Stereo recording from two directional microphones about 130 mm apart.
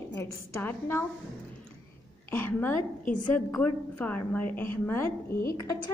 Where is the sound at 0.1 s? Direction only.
20° left (ahead or behind).